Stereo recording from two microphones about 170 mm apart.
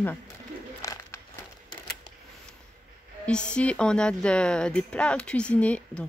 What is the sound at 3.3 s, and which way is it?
Speech, 5° left (ahead or behind).